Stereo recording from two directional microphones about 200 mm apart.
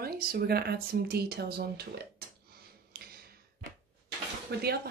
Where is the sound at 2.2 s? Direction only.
50° right (ahead or behind).